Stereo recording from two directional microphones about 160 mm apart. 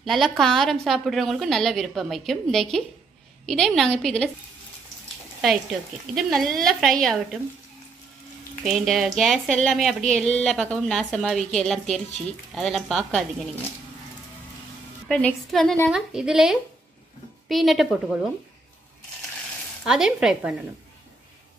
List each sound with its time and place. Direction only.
0.0 s speech: centre (ahead or behind)
6.1 s speech: centre (ahead or behind)
8.6 s speech: centre (ahead or behind)
15.0 s speech: 5° left (ahead or behind)
19.8 s speech: 5° right (ahead or behind)